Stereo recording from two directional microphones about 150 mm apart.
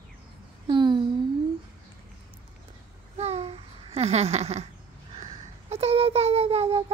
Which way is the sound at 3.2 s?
45° right (ahead or behind).